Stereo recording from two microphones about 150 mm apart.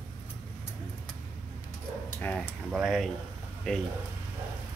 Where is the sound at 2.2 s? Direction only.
10° left (ahead or behind).